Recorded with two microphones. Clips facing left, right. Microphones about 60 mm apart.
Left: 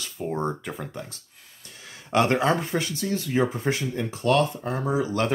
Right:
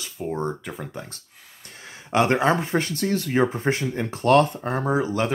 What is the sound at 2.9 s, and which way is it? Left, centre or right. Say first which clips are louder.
Speech: right 4 dB; right.